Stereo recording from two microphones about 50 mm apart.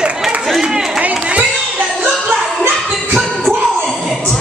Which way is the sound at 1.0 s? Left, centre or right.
Right.